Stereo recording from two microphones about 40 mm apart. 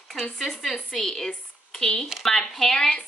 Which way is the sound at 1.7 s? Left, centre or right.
Left.